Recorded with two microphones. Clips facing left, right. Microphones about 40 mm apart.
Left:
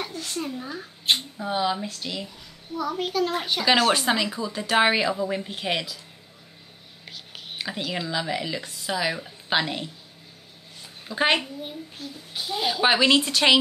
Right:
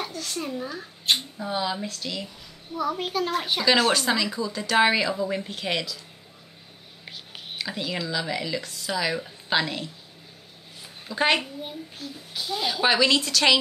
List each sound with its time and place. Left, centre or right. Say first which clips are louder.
0.3 s a child's voice: right 1 dB; centre
0.7 s a woman's voice: left 1 dB; centre
2.7 s a child's voice: even; centre
3.9 s a woman's voice: left 1 dB; centre
7.5 s a woman's voice: even; centre
11.1 s a woman's voice: even; centre